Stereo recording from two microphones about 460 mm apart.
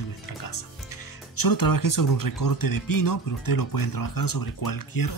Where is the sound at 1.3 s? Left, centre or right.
Left.